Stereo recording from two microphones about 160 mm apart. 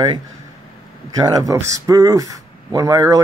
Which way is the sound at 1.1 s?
25° right (ahead or behind).